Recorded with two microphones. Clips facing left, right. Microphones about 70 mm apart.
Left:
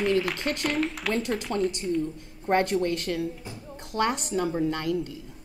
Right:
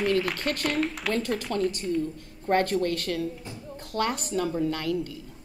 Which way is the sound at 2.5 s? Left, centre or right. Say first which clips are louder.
Even; centre.